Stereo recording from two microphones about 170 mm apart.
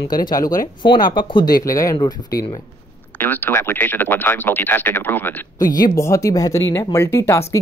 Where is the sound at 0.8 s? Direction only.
90° left.